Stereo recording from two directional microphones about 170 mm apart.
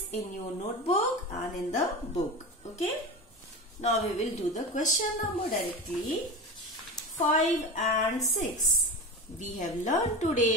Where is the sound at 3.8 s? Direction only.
40° left (ahead or behind).